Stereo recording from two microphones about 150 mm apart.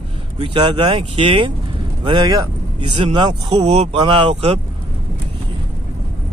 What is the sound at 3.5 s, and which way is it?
Speech, 40° right (ahead or behind).